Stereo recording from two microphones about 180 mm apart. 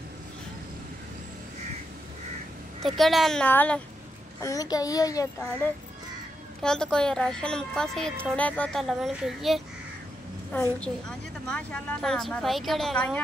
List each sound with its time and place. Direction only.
2.8 s a woman's voice: centre (ahead or behind)
4.4 s a child's voice: 20° left (ahead or behind)
6.6 s a woman's voice: 5° left (ahead or behind)